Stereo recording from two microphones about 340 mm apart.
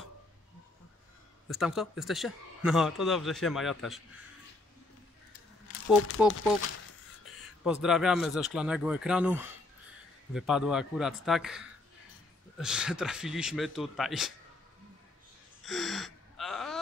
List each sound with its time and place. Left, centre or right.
1.5 s a man's voice: centre
6.2 s a man's voice: centre
7.6 s a man's voice: centre
15.6 s gasp: centre